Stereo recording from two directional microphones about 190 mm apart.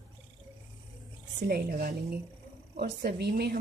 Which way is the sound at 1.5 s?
50° right (ahead or behind).